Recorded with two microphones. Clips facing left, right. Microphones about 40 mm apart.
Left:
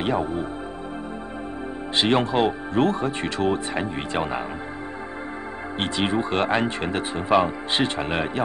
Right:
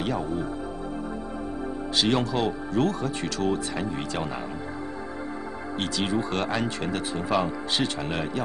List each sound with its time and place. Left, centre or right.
0.0 s speech: left
2.0 s speech: left
5.8 s speech: left